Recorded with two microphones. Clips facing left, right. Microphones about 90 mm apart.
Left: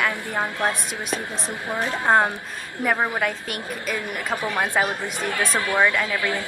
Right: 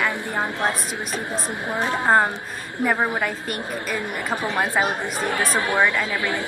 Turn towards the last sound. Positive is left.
turn(degrees=-20)  # may be behind; listen again after turning